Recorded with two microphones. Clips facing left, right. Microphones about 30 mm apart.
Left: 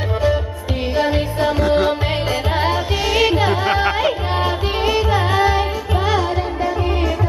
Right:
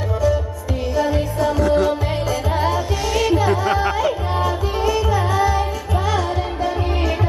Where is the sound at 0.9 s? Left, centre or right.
Left.